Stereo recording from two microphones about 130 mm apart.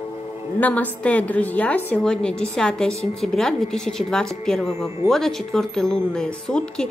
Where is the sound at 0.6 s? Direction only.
10° left (ahead or behind).